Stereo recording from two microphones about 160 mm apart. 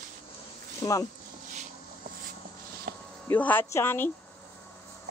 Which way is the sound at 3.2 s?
10° left (ahead or behind).